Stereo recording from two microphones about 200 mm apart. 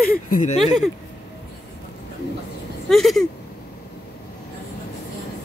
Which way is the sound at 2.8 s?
Centre (ahead or behind).